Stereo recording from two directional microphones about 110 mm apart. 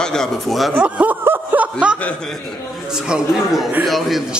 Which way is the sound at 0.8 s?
15° right (ahead or behind).